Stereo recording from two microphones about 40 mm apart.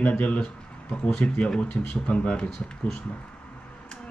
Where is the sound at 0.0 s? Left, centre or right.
Left.